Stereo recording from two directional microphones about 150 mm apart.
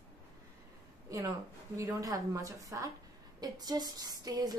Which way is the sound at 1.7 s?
25° right (ahead or behind).